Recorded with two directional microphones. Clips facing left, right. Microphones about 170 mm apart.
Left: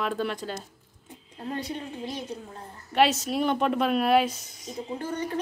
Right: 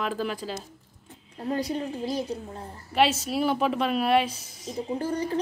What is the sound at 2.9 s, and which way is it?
Speech, centre (ahead or behind).